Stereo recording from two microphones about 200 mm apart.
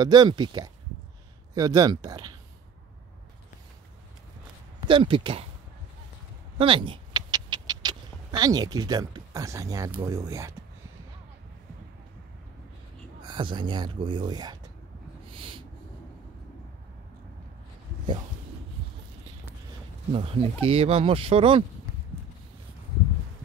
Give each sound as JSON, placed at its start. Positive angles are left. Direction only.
{"t": 0.0, "sound": "speech", "side_deg": -20}
{"t": 4.8, "sound": "speech", "side_deg": -25}
{"t": 6.6, "sound": "speech", "side_deg": -25}
{"t": 13.2, "sound": "speech", "side_deg": -25}
{"t": 15.3, "sound": "snort", "side_deg": -25}
{"t": 20.1, "sound": "speech", "side_deg": -25}